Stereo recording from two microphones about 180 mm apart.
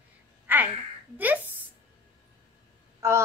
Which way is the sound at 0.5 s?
10° right (ahead or behind).